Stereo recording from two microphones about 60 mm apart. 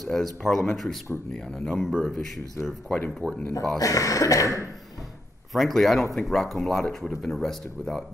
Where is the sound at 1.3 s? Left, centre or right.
Centre.